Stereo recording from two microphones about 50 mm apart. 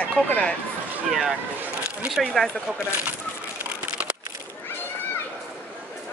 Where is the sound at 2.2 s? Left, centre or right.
Centre.